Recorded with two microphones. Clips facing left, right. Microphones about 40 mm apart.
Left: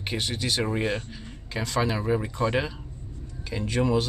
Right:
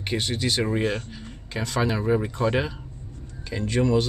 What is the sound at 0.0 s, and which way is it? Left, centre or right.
Speech, centre.